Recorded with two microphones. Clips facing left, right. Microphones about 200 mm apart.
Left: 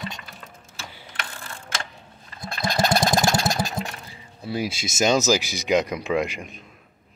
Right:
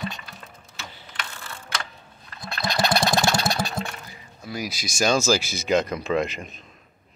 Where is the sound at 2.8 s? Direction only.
45° left (ahead or behind).